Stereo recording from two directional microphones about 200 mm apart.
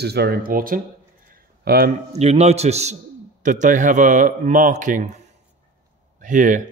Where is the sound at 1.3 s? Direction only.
50° right (ahead or behind).